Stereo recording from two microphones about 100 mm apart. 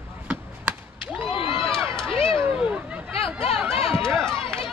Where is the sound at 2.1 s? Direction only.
70° left (ahead or behind).